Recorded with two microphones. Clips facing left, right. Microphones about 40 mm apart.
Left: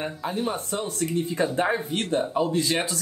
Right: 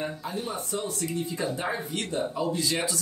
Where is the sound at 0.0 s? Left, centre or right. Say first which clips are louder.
Left 4 dB; left.